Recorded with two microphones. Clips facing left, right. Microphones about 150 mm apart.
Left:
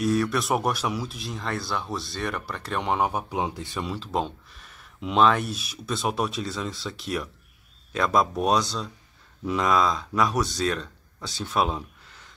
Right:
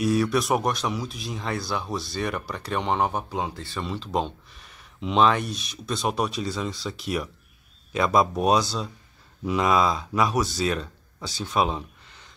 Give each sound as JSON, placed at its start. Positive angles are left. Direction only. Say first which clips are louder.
{"t": 0.0, "sound": "speech", "louder": "right 1 dB", "side_deg": -5}
{"t": 3.3, "sound": "speech", "louder": "left 1 dB", "side_deg": 20}
{"t": 3.9, "sound": "speech", "louder": "right 2 dB", "side_deg": 5}